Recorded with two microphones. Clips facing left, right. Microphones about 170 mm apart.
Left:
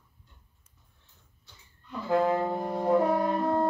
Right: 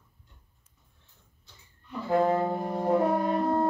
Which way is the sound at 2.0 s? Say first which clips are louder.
Right 1 dB; 35° right (ahead or behind).